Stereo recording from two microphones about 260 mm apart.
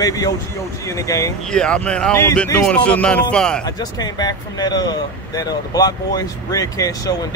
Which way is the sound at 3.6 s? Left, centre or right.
Centre.